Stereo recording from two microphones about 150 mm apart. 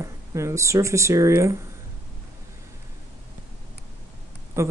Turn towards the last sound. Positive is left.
turn(degrees=-20)  # may be behind; listen again after turning